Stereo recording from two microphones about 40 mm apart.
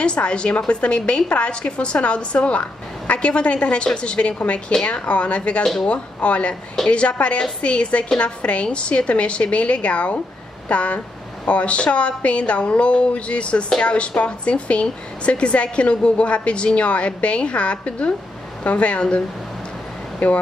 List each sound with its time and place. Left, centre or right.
0.0 s a woman's voice: left